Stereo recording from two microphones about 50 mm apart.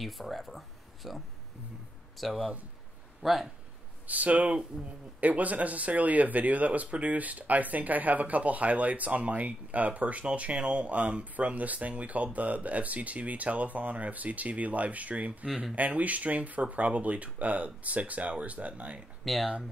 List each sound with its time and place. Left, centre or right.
0.0 s a sound: centre
2.1 s speech: centre
4.1 s speech: right
15.4 s speech: centre
15.7 s speech: right
19.2 s speech: centre